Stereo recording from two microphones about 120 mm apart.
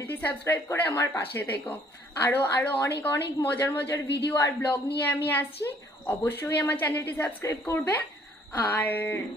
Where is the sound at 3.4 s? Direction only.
15° left (ahead or behind).